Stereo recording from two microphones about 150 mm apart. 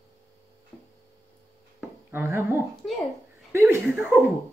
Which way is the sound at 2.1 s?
20° right (ahead or behind).